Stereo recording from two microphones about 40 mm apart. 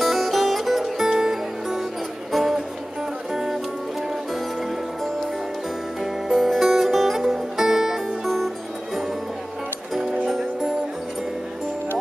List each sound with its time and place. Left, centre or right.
0.0 s music: centre
10.2 s music: centre